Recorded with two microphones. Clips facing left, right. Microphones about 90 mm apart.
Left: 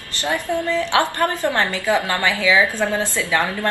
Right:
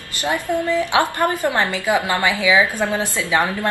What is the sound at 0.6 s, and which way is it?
A woman's voice, 15° right (ahead or behind).